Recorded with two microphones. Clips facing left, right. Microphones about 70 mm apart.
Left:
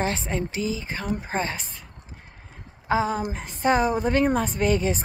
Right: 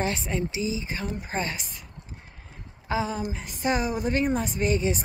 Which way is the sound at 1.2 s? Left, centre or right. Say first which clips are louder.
Left 3 dB; left.